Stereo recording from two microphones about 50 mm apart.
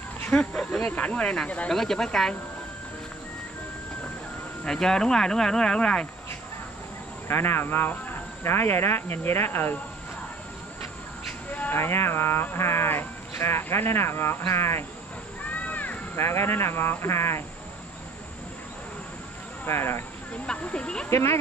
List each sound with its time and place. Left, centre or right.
0.3 s speech: left
0.6 s snake: centre
0.8 s speech: left; by 2.0 s centre
4.6 s speech: centre
7.2 s speech: left
11.7 s speech: left
15.4 s crow: left
16.2 s speech: left
19.6 s speech: left
20.6 s speech: centre
21.1 s speech: left